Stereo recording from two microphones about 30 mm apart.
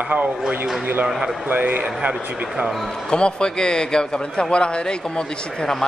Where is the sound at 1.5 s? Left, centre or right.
Right.